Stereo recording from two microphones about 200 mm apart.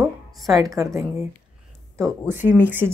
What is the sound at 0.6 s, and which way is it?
Speech, 15° right (ahead or behind).